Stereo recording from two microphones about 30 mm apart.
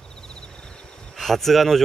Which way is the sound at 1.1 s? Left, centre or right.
Centre.